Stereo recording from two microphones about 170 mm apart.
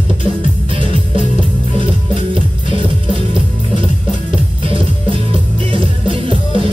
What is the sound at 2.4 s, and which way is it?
Music, 30° right (ahead or behind).